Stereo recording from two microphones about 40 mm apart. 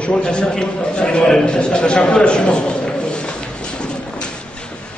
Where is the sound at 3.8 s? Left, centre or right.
Left.